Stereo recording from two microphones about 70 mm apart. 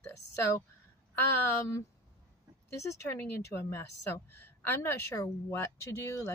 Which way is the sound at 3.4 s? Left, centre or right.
Left.